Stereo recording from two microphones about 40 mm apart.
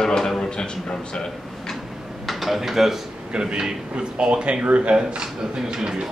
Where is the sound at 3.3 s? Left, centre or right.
Right.